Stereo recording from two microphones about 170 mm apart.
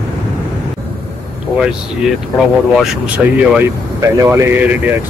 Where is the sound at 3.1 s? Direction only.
10° right (ahead or behind).